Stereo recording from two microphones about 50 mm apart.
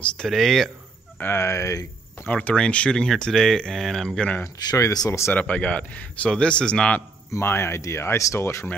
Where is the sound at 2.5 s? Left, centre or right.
Left.